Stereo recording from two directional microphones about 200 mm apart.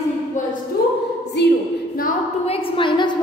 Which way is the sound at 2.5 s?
25° left (ahead or behind).